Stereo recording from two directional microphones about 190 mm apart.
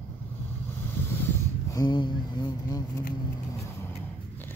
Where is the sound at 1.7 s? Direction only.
20° left (ahead or behind).